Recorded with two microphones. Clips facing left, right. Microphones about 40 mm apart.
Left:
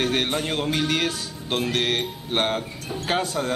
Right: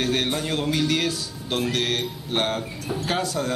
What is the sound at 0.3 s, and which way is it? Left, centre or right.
A man's voice, left.